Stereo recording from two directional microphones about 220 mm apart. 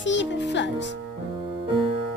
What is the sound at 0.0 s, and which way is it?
Speech, 55° left (ahead or behind).